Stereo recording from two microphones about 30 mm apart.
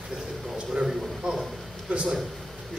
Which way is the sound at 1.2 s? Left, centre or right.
Right.